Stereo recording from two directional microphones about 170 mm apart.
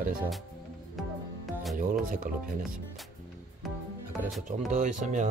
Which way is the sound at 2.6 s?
Centre (ahead or behind).